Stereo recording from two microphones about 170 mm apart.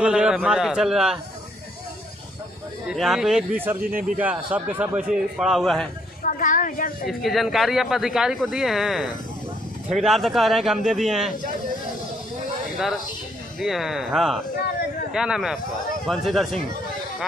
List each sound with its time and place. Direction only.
0.0 s a man's voice: 5° right (ahead or behind)
2.9 s a man's voice: 5° right (ahead or behind)
6.2 s a woman's voice: 50° left (ahead or behind)
7.1 s a man's voice: centre (ahead or behind)
13.6 s a man's voice: centre (ahead or behind)